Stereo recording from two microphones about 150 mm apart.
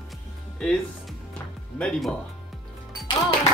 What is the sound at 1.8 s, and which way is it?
Music, 5° left (ahead or behind).